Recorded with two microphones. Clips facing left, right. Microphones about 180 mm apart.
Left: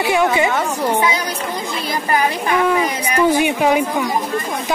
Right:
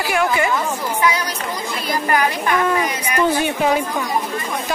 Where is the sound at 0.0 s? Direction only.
20° left (ahead or behind).